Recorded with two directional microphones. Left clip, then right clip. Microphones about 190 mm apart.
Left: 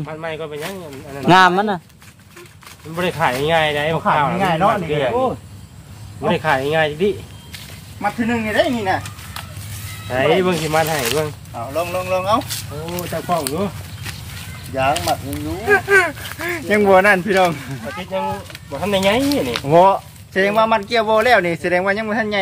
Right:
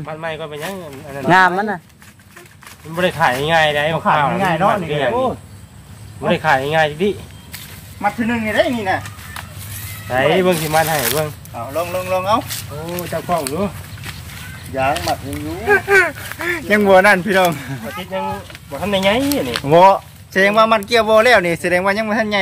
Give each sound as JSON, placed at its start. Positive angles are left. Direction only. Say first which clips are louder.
{"t": 0.0, "sound": "speech", "louder": "right 1 dB", "side_deg": -60}
{"t": 1.3, "sound": "speech", "louder": "left 1 dB", "side_deg": 25}
{"t": 3.0, "sound": "speech", "louder": "right 3 dB", "side_deg": -60}
{"t": 4.4, "sound": "speech", "louder": "right 1 dB", "side_deg": 0}
{"t": 4.8, "sound": "speech", "louder": "right 1 dB", "side_deg": -60}
{"t": 8.0, "sound": "speech", "louder": "right 1 dB", "side_deg": 0}
{"t": 10.0, "sound": "speech", "louder": "right 2 dB", "side_deg": -60}
{"t": 11.5, "sound": "speech", "louder": "even", "side_deg": 0}
{"t": 12.4, "sound": "speech", "louder": "right 1 dB", "side_deg": -20}
{"t": 13.3, "sound": "speech", "louder": "right 1 dB", "side_deg": -5}
{"t": 14.7, "sound": "speech", "louder": "even", "side_deg": -10}
{"t": 15.6, "sound": "speech", "louder": "right 1 dB", "side_deg": -20}
{"t": 17.8, "sound": "speech", "louder": "left 1 dB", "side_deg": 5}
{"t": 19.6, "sound": "speech", "louder": "right 3 dB", "side_deg": -55}